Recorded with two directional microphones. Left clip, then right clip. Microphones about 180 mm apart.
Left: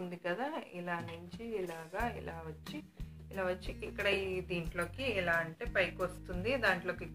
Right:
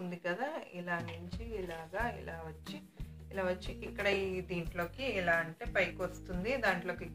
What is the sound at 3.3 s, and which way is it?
A woman's voice, 20° left (ahead or behind).